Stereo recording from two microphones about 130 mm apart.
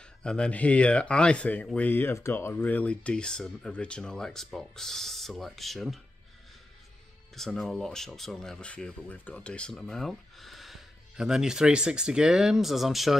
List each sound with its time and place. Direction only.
0.2 s speech: 5° left (ahead or behind)
7.3 s speech: centre (ahead or behind)